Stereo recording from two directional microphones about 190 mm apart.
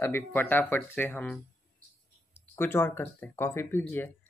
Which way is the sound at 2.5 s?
10° left (ahead or behind).